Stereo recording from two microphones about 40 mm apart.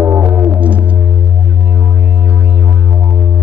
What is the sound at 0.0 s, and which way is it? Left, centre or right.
Music, right.